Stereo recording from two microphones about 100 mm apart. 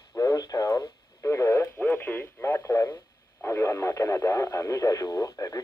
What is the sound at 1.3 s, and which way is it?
Speech, 25° left (ahead or behind).